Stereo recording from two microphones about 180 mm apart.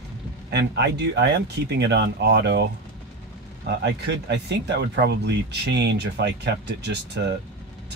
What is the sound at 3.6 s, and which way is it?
Speech, 70° right (ahead or behind).